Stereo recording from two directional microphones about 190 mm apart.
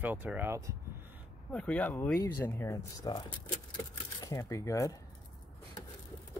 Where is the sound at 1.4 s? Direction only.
5° left (ahead or behind).